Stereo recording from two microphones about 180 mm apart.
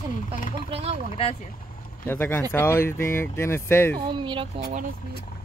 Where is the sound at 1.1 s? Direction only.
30° left (ahead or behind).